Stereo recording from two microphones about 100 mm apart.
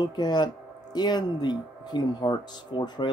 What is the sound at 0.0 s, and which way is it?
Speech, 45° left (ahead or behind).